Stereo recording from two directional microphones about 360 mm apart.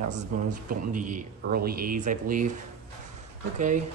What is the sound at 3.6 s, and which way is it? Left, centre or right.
Speech, right.